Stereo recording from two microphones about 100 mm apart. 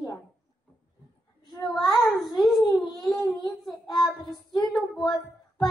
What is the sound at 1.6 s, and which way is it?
Child singing, centre (ahead or behind).